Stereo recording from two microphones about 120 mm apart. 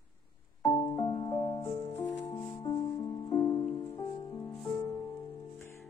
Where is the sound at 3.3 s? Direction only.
35° left (ahead or behind).